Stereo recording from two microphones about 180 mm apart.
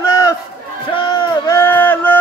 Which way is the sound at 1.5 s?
10° left (ahead or behind).